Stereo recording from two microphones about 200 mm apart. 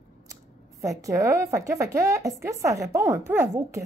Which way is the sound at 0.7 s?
15° right (ahead or behind).